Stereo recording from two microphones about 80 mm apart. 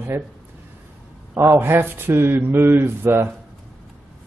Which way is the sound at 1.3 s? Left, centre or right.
Right.